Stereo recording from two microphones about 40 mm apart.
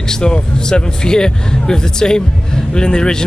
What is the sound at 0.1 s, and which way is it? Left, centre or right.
Speech, centre.